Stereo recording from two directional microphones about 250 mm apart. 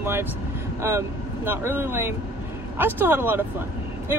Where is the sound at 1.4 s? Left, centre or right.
Centre.